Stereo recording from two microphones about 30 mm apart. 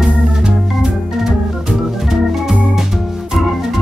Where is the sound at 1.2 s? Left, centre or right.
Centre.